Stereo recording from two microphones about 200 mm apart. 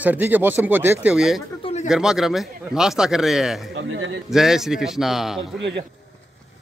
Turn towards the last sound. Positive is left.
turn(degrees=0)  # may be behind; listen again after turning